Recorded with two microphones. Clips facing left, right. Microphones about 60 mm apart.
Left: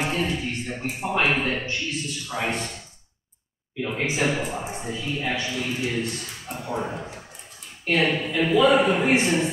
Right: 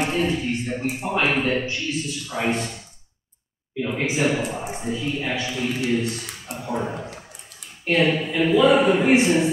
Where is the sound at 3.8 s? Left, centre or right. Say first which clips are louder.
Right 2 dB; centre.